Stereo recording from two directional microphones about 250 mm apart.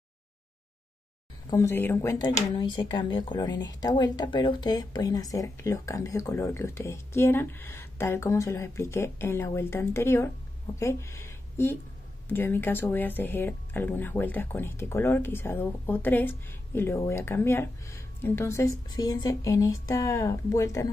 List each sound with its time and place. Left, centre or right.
1.5 s speech: centre